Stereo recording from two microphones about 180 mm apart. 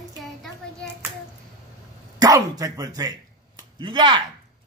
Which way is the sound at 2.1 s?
20° right (ahead or behind).